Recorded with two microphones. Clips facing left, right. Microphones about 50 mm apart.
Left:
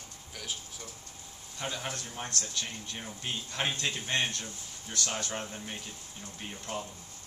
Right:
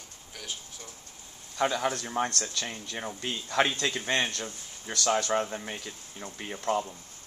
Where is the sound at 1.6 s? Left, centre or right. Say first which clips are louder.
Right 9 dB; right.